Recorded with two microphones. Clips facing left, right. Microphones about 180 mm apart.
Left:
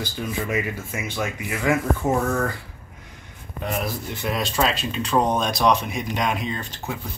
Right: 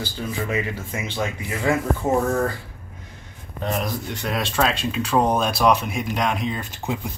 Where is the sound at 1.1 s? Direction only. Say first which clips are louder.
Right 1 dB; 30° right (ahead or behind).